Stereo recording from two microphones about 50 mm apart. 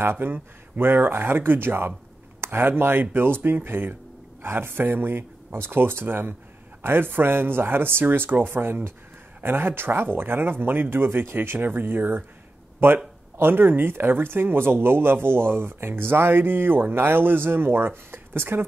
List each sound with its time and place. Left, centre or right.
0.0 s speech: right
12.8 s speech: right